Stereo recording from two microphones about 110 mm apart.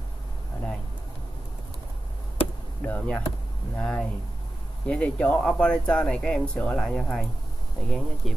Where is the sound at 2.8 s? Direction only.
15° left (ahead or behind).